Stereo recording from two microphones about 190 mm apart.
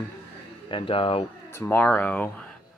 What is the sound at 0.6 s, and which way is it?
Speech, 25° left (ahead or behind).